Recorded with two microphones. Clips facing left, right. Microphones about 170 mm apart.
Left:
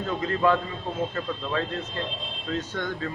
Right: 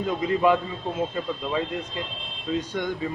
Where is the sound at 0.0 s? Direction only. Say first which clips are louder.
Right 2 dB; 15° right (ahead or behind).